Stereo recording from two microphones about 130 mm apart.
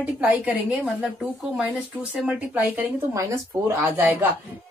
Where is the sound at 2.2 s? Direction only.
15° right (ahead or behind).